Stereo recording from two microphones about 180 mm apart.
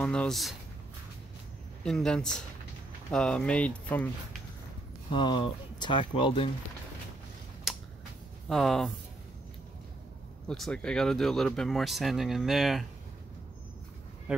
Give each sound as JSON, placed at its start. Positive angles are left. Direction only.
{"t": 0.0, "sound": "speech", "side_deg": 5}
{"t": 1.8, "sound": "speech", "side_deg": 5}
{"t": 5.1, "sound": "speech", "side_deg": 25}
{"t": 7.7, "sound": "a sound", "side_deg": 0}
{"t": 8.5, "sound": "speech", "side_deg": 0}
{"t": 10.5, "sound": "speech", "side_deg": 5}